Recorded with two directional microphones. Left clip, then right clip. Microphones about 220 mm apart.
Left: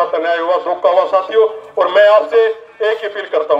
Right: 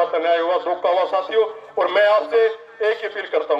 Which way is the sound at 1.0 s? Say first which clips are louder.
Left 7 dB; 45° left (ahead or behind).